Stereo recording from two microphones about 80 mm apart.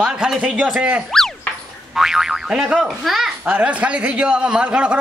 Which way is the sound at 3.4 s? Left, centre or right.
Centre.